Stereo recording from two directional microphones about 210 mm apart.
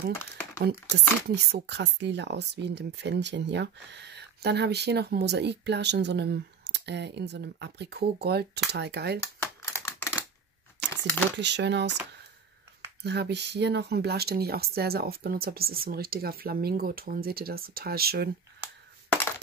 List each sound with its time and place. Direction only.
0.7 s speech: 55° right (ahead or behind)
9.2 s typing: 10° left (ahead or behind)
10.8 s a sound: 10° left (ahead or behind)
11.3 s speech: 55° right (ahead or behind)
13.0 s speech: 55° right (ahead or behind)